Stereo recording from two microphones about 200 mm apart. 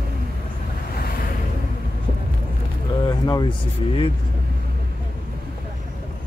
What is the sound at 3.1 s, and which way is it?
Speech, 20° left (ahead or behind).